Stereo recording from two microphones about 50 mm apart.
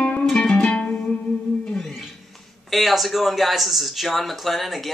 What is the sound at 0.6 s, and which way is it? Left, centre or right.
Music, centre.